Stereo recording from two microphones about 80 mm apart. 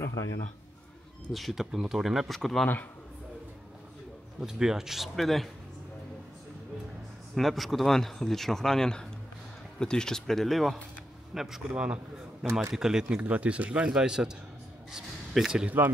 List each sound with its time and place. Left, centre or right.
0.0 s a man's voice: left
1.3 s speech: centre
2.6 s speech: left
4.4 s speech: centre
7.3 s a man's voice: centre